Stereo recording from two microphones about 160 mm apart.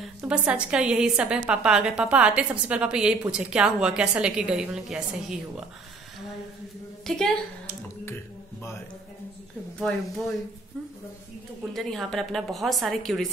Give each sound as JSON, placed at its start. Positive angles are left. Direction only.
{"t": 0.3, "sound": "a woman's voice", "side_deg": -5}
{"t": 7.1, "sound": "a woman's voice", "side_deg": 5}
{"t": 7.6, "sound": "finger snapping", "side_deg": 15}
{"t": 9.8, "sound": "a woman's voice", "side_deg": 5}
{"t": 11.7, "sound": "a woman's voice", "side_deg": 0}